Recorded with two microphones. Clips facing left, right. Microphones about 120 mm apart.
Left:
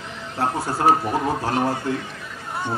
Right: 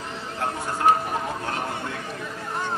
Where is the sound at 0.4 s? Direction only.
35° left (ahead or behind).